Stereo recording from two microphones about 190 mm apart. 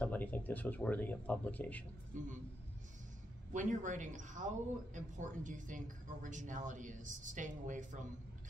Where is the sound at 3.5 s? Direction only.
40° right (ahead or behind).